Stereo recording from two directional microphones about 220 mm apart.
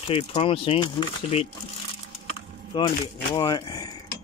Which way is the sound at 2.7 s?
20° left (ahead or behind).